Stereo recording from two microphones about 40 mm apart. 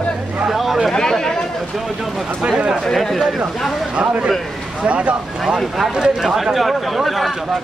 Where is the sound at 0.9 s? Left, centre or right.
Centre.